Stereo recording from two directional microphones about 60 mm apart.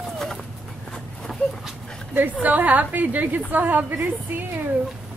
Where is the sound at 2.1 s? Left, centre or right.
Right.